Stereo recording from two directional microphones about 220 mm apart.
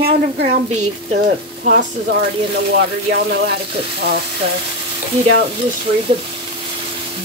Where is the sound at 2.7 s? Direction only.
50° right (ahead or behind).